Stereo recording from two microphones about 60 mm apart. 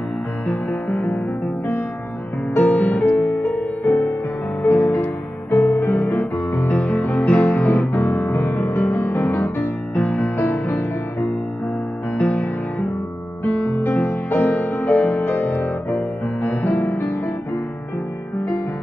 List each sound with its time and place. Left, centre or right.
0.5 s music: left
2.5 s music: left
4.6 s music: left
12.2 s music: left